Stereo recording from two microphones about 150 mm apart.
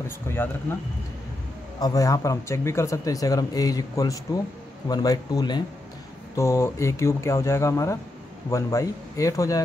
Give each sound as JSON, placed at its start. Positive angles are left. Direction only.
{"t": 0.3, "sound": "speech", "side_deg": 15}
{"t": 1.8, "sound": "speech", "side_deg": 25}